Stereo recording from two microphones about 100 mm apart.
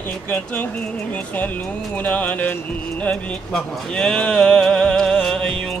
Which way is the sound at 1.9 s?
15° left (ahead or behind).